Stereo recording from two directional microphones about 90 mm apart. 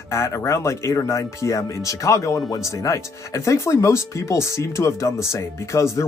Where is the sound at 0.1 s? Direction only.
30° left (ahead or behind).